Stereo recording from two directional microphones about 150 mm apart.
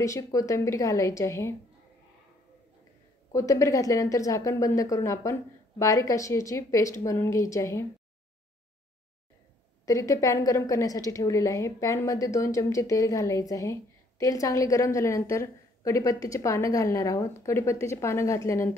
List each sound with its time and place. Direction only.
0.0 s a woman's voice: 20° left (ahead or behind)
3.3 s a woman's voice: 20° left (ahead or behind)
9.8 s a woman's voice: 20° left (ahead or behind)